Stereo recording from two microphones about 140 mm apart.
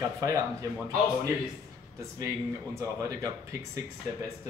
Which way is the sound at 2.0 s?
25° right (ahead or behind).